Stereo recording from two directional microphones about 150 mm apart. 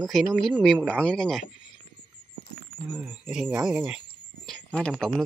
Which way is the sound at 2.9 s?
10° right (ahead or behind).